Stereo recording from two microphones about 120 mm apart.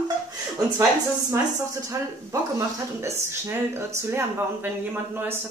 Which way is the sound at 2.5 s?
20° right (ahead or behind).